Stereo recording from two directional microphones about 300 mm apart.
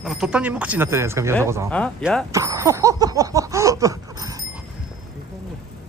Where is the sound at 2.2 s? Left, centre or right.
Centre.